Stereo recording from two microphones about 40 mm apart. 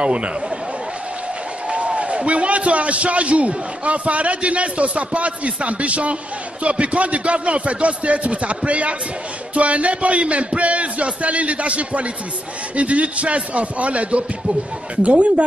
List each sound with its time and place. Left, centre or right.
0.0 s speech: right
1.7 s a man's voice: right